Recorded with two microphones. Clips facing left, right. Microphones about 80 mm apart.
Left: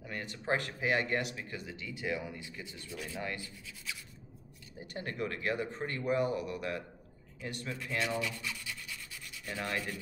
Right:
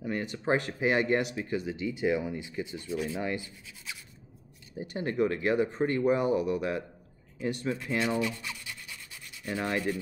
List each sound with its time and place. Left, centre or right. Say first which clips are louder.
0.0 s speech: right 8 dB; right
7.3 s rub: right 9 dB; right
9.5 s speech: right 7 dB; right